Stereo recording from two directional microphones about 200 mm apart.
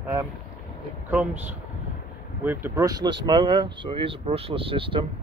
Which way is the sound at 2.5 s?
10° right (ahead or behind).